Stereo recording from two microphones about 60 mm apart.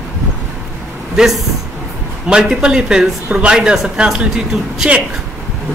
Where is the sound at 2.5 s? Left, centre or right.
Centre.